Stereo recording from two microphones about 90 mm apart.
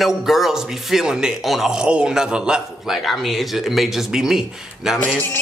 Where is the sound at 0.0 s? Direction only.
5° right (ahead or behind).